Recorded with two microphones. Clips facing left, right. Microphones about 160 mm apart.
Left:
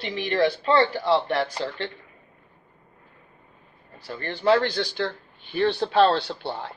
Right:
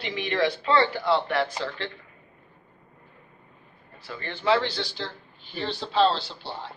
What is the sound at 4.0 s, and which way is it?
A man's voice, 40° left (ahead or behind).